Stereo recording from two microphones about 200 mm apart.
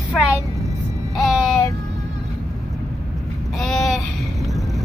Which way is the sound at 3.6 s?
Centre (ahead or behind).